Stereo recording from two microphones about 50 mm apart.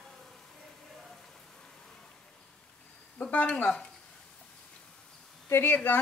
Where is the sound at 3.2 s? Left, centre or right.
Left.